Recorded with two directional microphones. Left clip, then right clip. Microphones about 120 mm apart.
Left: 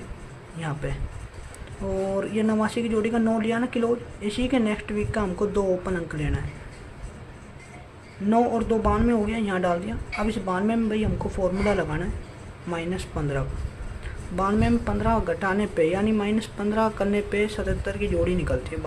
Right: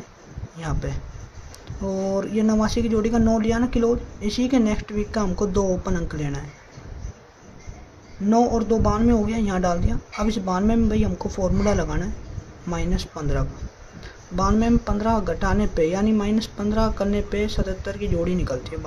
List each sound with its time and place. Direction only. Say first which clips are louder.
0.6 s speech: right 1 dB; 20° right (ahead or behind)
8.3 s speech: right 2 dB; 15° right (ahead or behind)